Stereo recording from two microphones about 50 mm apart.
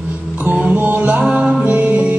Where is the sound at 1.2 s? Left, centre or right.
Centre.